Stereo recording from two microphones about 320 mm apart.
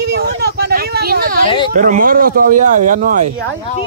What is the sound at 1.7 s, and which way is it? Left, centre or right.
Speech, right.